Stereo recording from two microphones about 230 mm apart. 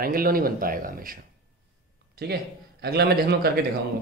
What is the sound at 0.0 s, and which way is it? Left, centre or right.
Speech, right.